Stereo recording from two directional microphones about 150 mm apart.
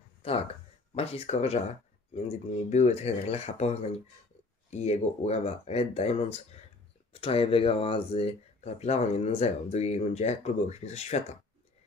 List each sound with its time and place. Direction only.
0.2 s speech: 40° left (ahead or behind)